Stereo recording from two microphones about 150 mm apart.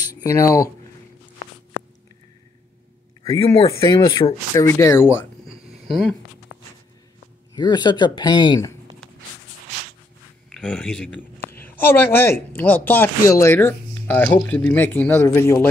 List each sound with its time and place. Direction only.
0.1 s speech: 20° left (ahead or behind)
3.9 s speech: 30° left (ahead or behind)
4.6 s speech: 20° left (ahead or behind)
5.9 s speech: centre (ahead or behind)
7.5 s speech: 30° left (ahead or behind)
10.5 s speech: 5° left (ahead or behind)